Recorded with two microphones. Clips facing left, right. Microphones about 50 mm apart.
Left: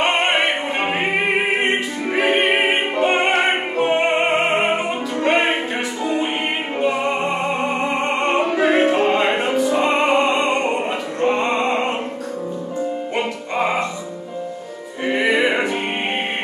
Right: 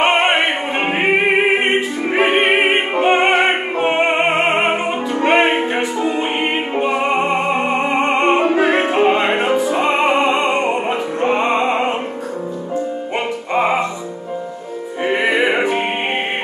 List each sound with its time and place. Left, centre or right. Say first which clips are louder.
0.0 s opera: right 3 dB; right
2.1 s music: right 3 dB; right
10.2 s opera: right 2 dB; right
10.7 s music: right 3 dB; right
13.5 s music: right 5 dB; centre
15.0 s music: right 1 dB; right